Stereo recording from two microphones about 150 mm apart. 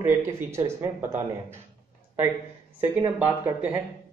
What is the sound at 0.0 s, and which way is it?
Speech, 15° right (ahead or behind).